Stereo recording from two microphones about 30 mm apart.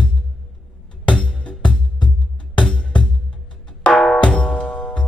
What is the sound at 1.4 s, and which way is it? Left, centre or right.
Music, left.